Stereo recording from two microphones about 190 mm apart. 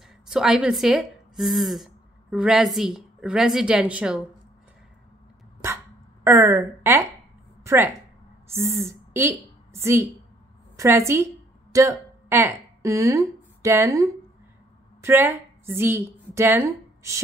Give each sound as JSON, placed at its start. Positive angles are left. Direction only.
{"t": 0.3, "sound": "a woman's voice", "side_deg": -5}
{"t": 6.2, "sound": "a woman's voice", "side_deg": -15}